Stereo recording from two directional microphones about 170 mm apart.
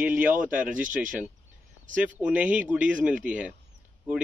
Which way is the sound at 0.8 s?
50° right (ahead or behind).